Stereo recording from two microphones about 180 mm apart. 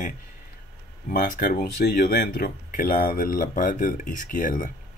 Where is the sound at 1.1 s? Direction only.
50° left (ahead or behind).